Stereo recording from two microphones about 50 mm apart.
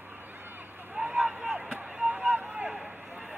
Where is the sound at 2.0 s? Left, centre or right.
Right.